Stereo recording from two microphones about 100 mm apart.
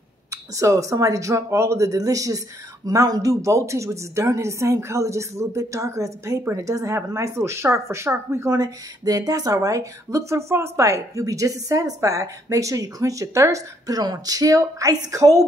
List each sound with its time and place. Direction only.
0.3 s speech: 30° right (ahead or behind)